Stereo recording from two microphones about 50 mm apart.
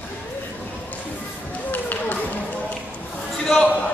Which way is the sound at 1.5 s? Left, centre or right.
Left.